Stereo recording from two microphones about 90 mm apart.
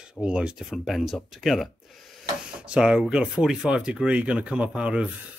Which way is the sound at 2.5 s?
10° right (ahead or behind).